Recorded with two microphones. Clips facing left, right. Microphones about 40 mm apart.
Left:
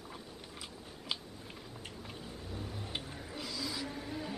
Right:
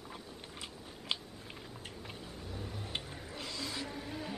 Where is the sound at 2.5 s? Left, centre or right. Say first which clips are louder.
Right 1 dB; centre.